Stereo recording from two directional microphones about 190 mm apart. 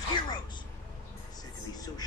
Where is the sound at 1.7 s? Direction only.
20° left (ahead or behind).